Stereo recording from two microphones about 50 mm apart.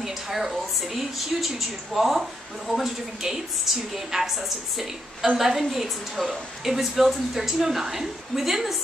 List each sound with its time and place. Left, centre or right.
0.0 s a woman's voice: centre